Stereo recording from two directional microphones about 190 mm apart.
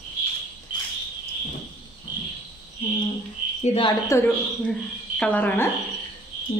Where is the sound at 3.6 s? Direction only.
30° left (ahead or behind).